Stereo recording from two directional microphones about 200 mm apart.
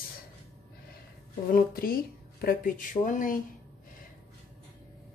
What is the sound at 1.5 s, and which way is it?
A woman's voice, 45° left (ahead or behind).